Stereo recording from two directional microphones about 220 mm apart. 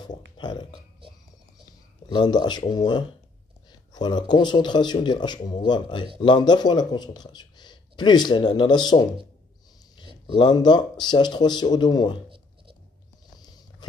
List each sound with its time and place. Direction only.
0.4 s speech: 20° left (ahead or behind)
2.0 s speech: 20° left (ahead or behind)
10.3 s speech: 20° left (ahead or behind)